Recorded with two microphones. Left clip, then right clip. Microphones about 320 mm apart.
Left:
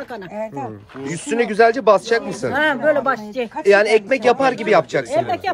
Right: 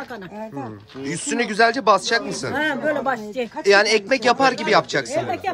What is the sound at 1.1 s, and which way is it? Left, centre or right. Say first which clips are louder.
Speech: left 3 dB; centre.